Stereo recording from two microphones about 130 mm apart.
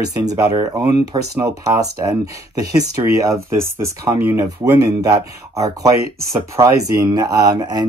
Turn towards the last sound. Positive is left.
turn(degrees=-30)  # may be behind; listen again after turning